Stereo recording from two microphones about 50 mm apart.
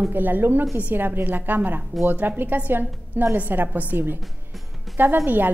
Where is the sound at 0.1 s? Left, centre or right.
Right.